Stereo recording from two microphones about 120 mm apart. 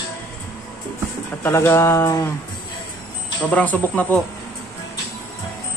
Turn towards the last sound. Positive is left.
turn(degrees=15)  # may be behind; listen again after turning